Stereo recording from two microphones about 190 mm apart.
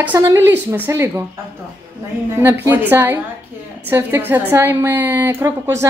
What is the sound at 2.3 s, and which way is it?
A woman's voice, 10° right (ahead or behind).